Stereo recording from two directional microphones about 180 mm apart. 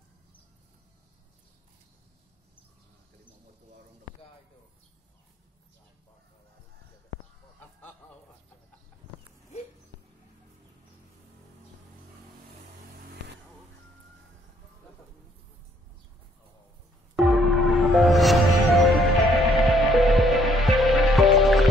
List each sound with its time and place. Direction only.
13.0 s vehicle: 65° right (ahead or behind)
17.1 s music: centre (ahead or behind)